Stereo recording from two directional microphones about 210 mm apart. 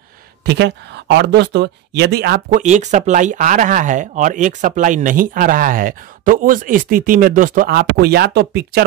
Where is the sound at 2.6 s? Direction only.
35° right (ahead or behind).